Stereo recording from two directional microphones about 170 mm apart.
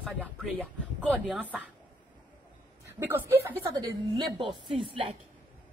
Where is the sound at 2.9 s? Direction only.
10° right (ahead or behind).